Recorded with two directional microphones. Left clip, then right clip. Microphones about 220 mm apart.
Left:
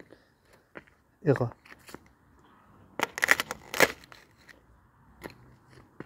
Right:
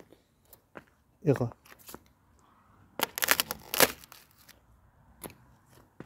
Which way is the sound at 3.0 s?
15° right (ahead or behind).